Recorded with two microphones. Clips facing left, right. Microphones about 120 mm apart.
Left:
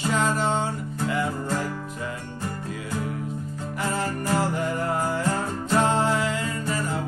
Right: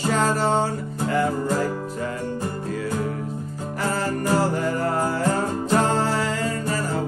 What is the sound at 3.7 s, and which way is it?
Music, 35° right (ahead or behind).